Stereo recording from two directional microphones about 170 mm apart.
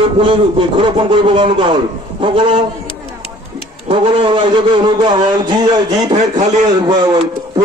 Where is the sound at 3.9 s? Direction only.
30° right (ahead or behind).